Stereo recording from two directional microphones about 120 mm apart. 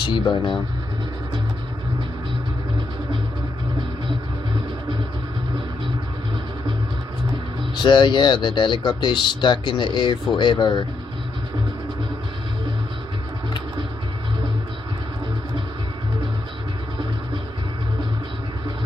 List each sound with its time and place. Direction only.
0.0 s speech: 40° left (ahead or behind)
7.7 s speech: 40° left (ahead or behind)